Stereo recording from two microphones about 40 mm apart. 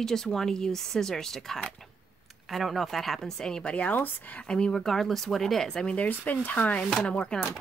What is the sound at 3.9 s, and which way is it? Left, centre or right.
Speech, left.